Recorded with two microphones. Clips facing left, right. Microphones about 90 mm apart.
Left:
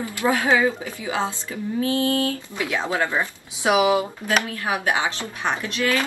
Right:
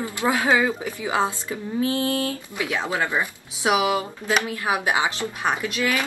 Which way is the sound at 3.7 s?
20° left (ahead or behind).